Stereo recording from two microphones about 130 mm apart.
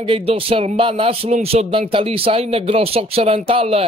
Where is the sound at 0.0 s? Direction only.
45° right (ahead or behind).